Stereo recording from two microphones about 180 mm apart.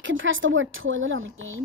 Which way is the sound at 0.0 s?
90° right.